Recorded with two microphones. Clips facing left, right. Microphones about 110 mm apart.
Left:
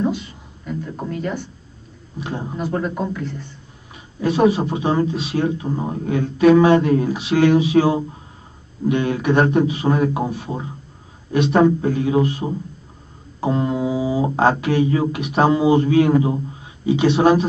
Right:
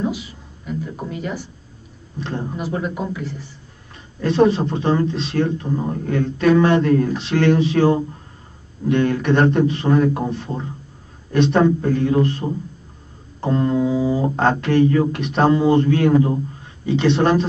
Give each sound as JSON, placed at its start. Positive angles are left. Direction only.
{"t": 0.0, "sound": "a sound", "side_deg": -5}
{"t": 2.1, "sound": "a man's voice", "side_deg": 10}
{"t": 2.5, "sound": "a man's voice", "side_deg": -5}
{"t": 4.2, "sound": "a man's voice", "side_deg": 10}